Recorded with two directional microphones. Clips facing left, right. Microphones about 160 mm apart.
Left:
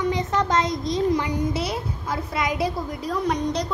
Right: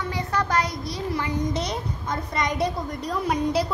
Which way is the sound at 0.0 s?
20° left (ahead or behind).